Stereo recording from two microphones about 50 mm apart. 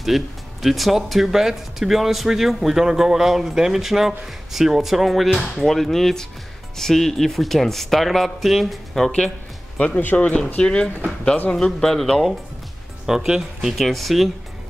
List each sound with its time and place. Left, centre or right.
0.0 s speech: centre
9.0 s speech: centre
9.8 s speech: left
11.5 s speech: centre
13.0 s speech: centre
13.7 s speech: centre